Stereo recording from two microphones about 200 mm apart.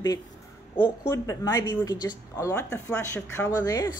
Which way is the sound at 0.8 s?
15° left (ahead or behind).